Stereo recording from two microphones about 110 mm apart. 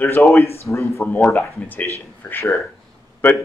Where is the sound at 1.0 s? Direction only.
15° left (ahead or behind).